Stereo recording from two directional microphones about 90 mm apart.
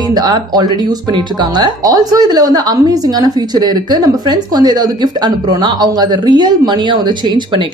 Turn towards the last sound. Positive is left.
turn(degrees=-55)  # may be behind; listen again after turning